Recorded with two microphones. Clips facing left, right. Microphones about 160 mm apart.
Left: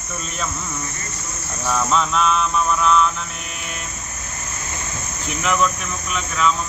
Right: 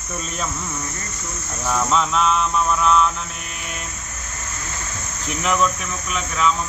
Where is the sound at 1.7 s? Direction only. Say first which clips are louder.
Even; 10° right (ahead or behind).